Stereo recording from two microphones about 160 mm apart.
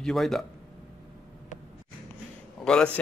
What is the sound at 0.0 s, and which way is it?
Speech, centre (ahead or behind).